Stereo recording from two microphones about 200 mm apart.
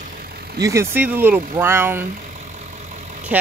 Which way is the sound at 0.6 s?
15° right (ahead or behind).